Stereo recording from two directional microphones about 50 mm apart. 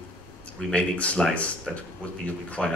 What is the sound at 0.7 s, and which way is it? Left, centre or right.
Speech, left.